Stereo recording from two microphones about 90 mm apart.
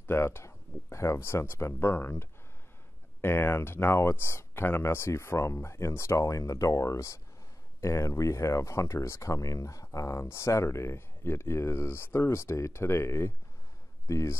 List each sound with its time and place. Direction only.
0.0 s speech: 25° left (ahead or behind)